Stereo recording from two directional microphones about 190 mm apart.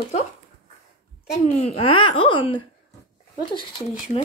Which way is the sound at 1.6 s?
30° left (ahead or behind).